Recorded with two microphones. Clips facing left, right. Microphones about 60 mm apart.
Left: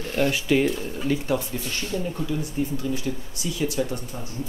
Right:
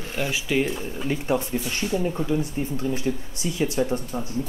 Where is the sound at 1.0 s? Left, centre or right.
Right.